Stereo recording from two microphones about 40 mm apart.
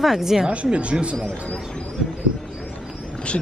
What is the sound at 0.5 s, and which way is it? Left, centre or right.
Speech, right.